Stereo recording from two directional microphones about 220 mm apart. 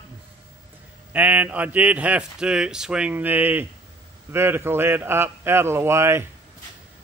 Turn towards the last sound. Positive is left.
turn(degrees=-10)  # may be behind; listen again after turning